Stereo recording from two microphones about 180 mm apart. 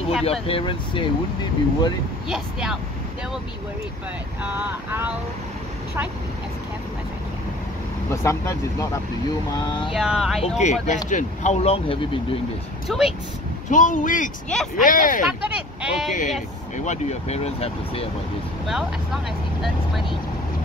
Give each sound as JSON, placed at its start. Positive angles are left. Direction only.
{"t": 0.2, "sound": "speech", "side_deg": 30}
{"t": 2.2, "sound": "speech", "side_deg": -5}
{"t": 8.1, "sound": "speech", "side_deg": 15}
{"t": 9.9, "sound": "speech", "side_deg": 0}
{"t": 10.6, "sound": "speech", "side_deg": 40}
{"t": 12.8, "sound": "speech", "side_deg": 0}
{"t": 13.7, "sound": "speech", "side_deg": 45}
{"t": 15.4, "sound": "speech", "side_deg": -5}
{"t": 16.1, "sound": "speech", "side_deg": 45}